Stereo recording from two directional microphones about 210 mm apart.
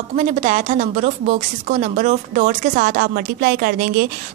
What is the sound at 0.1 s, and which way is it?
A woman's voice, 35° right (ahead or behind).